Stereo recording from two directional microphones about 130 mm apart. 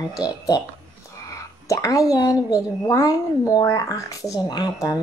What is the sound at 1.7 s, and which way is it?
Speech, 25° left (ahead or behind).